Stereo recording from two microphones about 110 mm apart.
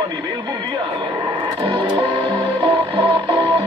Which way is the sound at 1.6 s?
50° right (ahead or behind).